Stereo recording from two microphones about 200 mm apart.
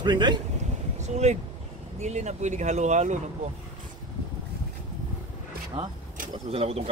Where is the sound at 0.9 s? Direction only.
35° right (ahead or behind).